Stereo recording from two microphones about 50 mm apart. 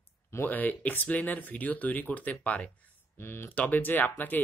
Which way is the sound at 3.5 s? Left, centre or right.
Left.